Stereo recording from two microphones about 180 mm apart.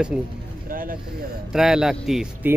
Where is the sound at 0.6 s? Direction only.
50° right (ahead or behind).